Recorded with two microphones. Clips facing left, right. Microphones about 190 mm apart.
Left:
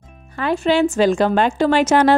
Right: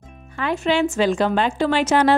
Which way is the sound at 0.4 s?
35° left (ahead or behind).